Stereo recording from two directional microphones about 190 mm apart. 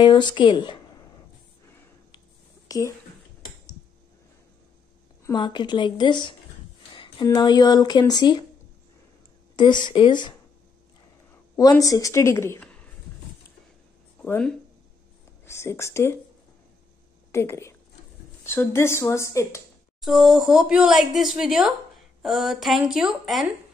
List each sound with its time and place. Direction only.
0.0 s speech: 25° left (ahead or behind)
2.7 s speech: 20° left (ahead or behind)
5.2 s speech: 25° left (ahead or behind)
9.8 s speech: 25° left (ahead or behind)
11.8 s speech: 20° left (ahead or behind)
14.2 s speech: 5° left (ahead or behind)
17.3 s a woman's voice: 15° left (ahead or behind)
20.0 s speech: centre (ahead or behind)